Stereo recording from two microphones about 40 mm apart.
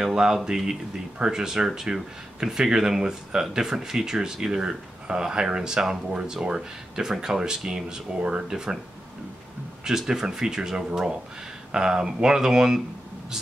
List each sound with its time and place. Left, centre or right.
0.0 s speech: centre
9.8 s speech: centre